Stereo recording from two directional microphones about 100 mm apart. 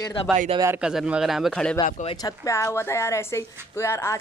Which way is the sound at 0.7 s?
10° right (ahead or behind).